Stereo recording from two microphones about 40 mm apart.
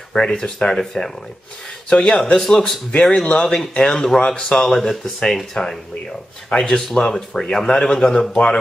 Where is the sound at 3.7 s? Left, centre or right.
Left.